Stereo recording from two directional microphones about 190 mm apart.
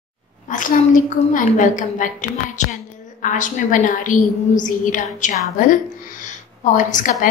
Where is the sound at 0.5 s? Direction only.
45° left (ahead or behind).